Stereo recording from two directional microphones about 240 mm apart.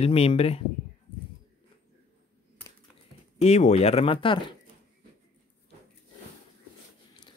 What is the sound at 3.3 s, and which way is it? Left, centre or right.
Speech, left.